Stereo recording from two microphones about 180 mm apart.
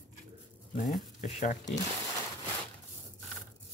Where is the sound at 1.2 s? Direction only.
40° left (ahead or behind).